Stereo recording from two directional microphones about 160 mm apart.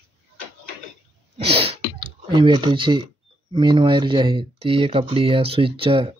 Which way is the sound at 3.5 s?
30° right (ahead or behind).